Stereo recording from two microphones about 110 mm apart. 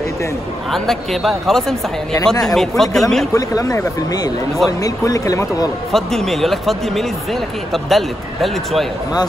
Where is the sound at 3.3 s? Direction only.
30° left (ahead or behind).